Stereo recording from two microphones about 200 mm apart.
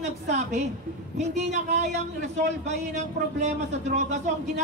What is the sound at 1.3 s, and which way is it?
Speech, 35° right (ahead or behind).